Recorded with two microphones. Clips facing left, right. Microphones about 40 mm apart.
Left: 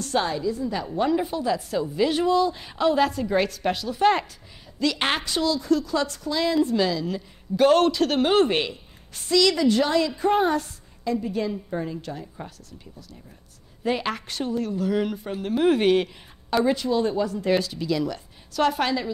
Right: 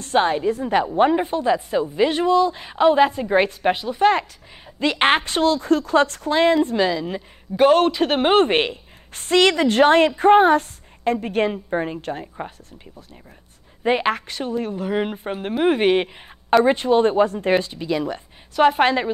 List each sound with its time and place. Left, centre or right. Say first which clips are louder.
0.0 s a woman's voice: right 6 dB; right
1.2 s a woman's voice: right 5 dB; right
4.0 s speech: right 3 dB; centre
4.7 s speech: right 6 dB; right
6.5 s a woman's voice: right 3 dB; right
7.6 s speech: right 3 dB; centre
8.0 s a woman's voice: right 3 dB; right
14.3 s a woman's voice: right 2 dB; right
15.5 s a woman's voice: right 2 dB; right
16.4 s speech: right 6 dB; right